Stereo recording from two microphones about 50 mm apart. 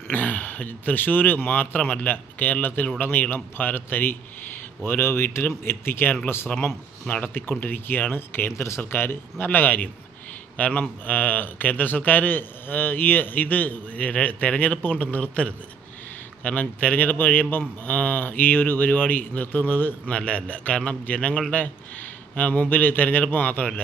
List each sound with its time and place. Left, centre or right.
0.1 s speech: left
7.1 s a man's voice: left
7.6 s speech: left
16.4 s speech: left
20.1 s a man's voice: left